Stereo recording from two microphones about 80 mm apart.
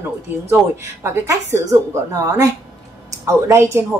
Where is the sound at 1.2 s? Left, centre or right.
Right.